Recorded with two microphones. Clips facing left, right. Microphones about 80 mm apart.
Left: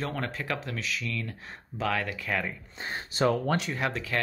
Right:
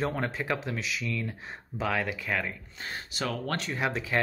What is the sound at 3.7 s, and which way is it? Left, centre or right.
Speech, centre.